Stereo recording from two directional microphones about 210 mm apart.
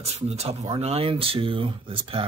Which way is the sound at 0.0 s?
30° right (ahead or behind).